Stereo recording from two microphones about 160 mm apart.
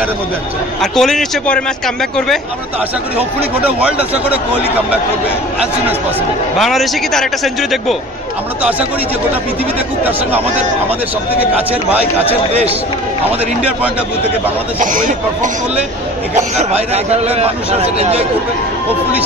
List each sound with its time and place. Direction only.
0.9 s a man's voice: 5° left (ahead or behind)
3.8 s a man's voice: 10° right (ahead or behind)
6.6 s a man's voice: centre (ahead or behind)
11.5 s a man's voice: 10° right (ahead or behind)
14.8 s speech: 55° right (ahead or behind)
16.3 s a man's voice: 45° right (ahead or behind)